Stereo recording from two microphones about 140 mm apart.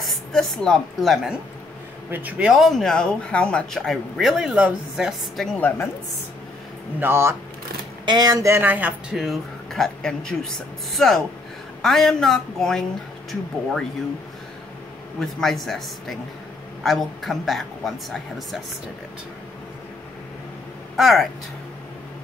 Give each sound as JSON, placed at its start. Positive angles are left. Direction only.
{"t": 0.0, "sound": "a woman's voice", "side_deg": 0}
{"t": 2.0, "sound": "speech", "side_deg": -15}
{"t": 5.6, "sound": "a woman's voice", "side_deg": 15}
{"t": 7.0, "sound": "speech", "side_deg": -15}
{"t": 8.0, "sound": "speech", "side_deg": -30}
{"t": 9.1, "sound": "speech", "side_deg": 0}
{"t": 15.1, "sound": "speech", "side_deg": 5}
{"t": 20.9, "sound": "speech", "side_deg": 0}